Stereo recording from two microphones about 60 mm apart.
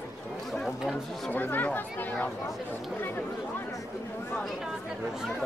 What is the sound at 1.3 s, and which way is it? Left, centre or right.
Speech, left.